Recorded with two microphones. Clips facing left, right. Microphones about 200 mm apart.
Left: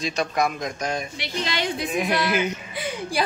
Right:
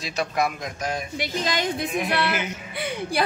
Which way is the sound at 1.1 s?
45° right (ahead or behind).